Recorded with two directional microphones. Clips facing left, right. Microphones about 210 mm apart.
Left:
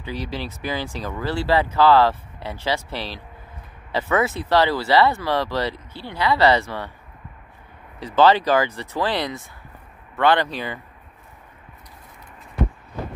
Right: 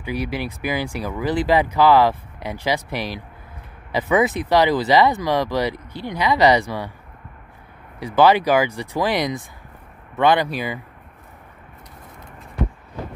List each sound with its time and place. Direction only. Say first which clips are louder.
0.0 s speech: right 4 dB; 10° right (ahead or behind)
8.0 s speech: right 1 dB; 10° right (ahead or behind)